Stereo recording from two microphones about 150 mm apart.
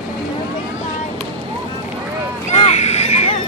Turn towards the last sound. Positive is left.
turn(degrees=45)  # may be behind; listen again after turning